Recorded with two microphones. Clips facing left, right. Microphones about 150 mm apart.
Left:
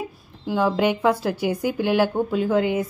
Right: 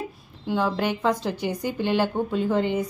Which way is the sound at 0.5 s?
10° left (ahead or behind).